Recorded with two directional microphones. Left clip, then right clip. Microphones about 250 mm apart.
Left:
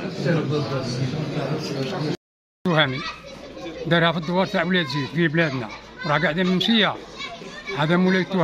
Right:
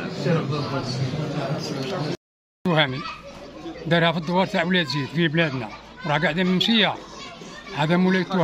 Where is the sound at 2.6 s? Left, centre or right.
Centre.